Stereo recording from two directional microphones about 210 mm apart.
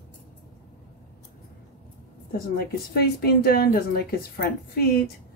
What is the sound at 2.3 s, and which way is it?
A woman's voice, 45° left (ahead or behind).